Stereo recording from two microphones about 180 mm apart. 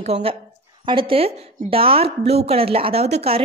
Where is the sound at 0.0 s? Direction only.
35° right (ahead or behind).